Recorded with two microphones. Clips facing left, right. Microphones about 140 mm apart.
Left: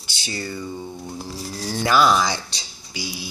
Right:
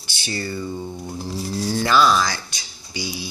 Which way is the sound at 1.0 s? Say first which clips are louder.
Right 3 dB; 10° right (ahead or behind).